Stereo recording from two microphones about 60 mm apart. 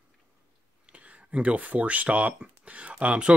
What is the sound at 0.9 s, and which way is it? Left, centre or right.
Speech, right.